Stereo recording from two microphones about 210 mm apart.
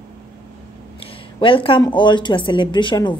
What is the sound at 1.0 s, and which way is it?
Speech, 25° left (ahead or behind).